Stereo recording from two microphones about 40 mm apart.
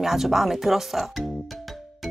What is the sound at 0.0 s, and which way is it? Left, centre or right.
Speech, centre.